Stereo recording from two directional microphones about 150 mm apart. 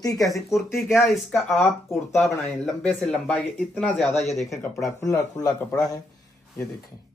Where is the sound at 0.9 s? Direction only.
Centre (ahead or behind).